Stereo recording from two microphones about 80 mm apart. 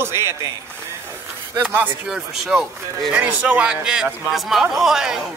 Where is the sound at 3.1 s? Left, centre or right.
Centre.